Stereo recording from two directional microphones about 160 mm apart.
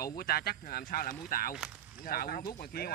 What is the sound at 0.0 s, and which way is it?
Speech, 70° left (ahead or behind).